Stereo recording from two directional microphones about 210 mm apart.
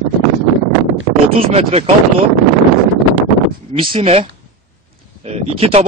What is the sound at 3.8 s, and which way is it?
Speech, 25° right (ahead or behind).